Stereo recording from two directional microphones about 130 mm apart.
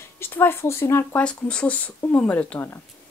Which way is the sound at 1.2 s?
5° left (ahead or behind).